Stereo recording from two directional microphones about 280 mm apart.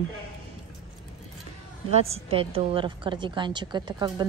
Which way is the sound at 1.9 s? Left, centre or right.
Right.